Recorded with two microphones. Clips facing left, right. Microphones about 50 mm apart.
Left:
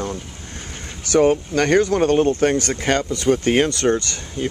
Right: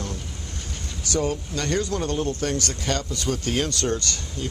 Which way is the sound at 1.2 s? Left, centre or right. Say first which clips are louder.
Left 10 dB; left.